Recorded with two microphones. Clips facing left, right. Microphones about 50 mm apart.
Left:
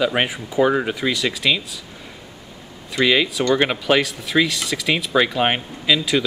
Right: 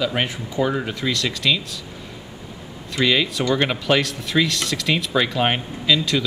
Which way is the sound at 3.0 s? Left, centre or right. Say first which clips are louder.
Left 2 dB; centre.